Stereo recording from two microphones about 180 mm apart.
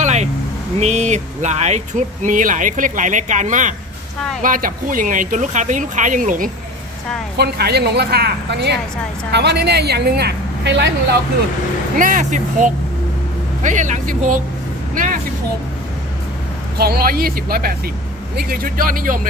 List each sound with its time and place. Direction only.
0.0 s vehicle: 40° right (ahead or behind)
0.7 s speech: 40° right (ahead or behind)
7.3 s a woman's voice: 65° right (ahead or behind)
12.0 s speech: 45° right (ahead or behind)
16.7 s a woman's voice: 60° right (ahead or behind)